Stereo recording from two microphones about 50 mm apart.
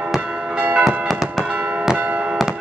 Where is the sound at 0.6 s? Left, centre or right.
Right.